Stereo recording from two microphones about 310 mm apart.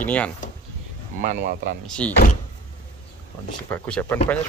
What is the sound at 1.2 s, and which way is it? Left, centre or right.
Speech, right.